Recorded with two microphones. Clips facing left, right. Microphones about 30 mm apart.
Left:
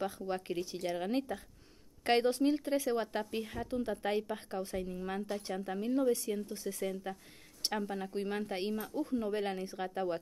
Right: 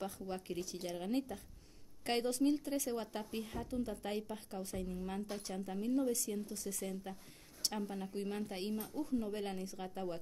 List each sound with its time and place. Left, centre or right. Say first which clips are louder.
0.0 s speech: left 6 dB; left